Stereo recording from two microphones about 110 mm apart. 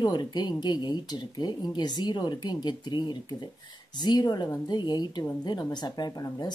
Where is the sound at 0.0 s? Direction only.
40° left (ahead or behind).